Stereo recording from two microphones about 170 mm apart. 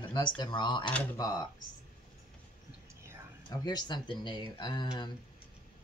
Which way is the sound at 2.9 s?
15° right (ahead or behind).